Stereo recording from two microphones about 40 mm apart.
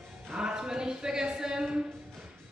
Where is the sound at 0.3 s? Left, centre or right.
Right.